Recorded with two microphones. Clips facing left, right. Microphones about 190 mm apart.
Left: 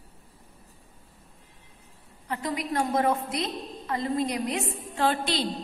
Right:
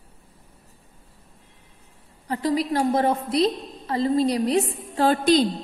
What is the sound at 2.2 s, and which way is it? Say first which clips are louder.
A woman's voice: right 7 dB; 30° right (ahead or behind).